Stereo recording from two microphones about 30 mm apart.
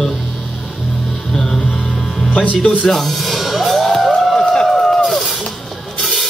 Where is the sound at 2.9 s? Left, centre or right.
Centre.